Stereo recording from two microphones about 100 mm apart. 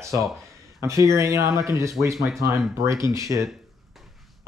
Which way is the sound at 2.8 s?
30° right (ahead or behind).